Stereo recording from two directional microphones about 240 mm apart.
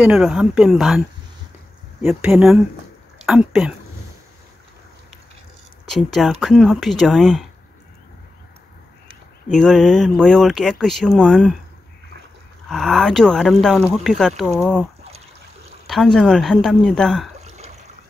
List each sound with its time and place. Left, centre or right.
0.0 s speech: centre
2.0 s speech: centre
5.9 s speech: centre
9.5 s speech: centre
12.6 s speech: centre
15.9 s speech: centre
17.4 s a sound: right